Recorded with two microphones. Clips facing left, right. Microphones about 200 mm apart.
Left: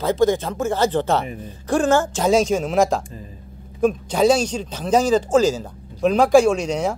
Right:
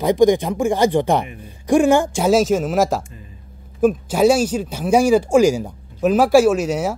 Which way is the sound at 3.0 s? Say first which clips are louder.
Left 5 dB; 35° left (ahead or behind).